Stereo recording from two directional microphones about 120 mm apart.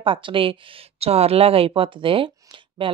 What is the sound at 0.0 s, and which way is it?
Speech, 45° right (ahead or behind).